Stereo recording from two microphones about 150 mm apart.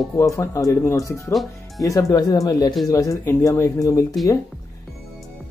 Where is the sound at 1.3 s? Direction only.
Centre (ahead or behind).